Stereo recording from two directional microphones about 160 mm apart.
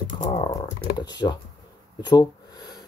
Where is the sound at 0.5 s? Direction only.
25° left (ahead or behind).